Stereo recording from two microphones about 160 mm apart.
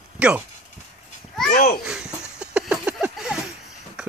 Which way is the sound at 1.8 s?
5° right (ahead or behind).